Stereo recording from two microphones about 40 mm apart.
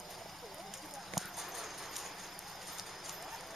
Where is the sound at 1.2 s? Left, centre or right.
Centre.